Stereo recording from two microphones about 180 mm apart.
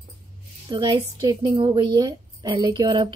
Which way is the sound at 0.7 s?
25° right (ahead or behind).